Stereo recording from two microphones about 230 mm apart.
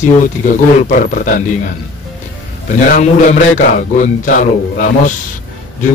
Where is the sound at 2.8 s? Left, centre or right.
Left.